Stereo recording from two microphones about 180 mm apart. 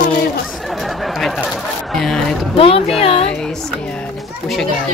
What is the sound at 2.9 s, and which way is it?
Speech, 35° left (ahead or behind).